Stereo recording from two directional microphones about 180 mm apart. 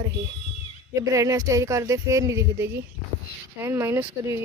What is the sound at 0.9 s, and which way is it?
Speech, 20° right (ahead or behind).